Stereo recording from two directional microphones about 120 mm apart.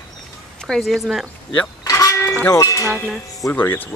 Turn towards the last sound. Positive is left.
turn(degrees=15)  # may be behind; listen again after turning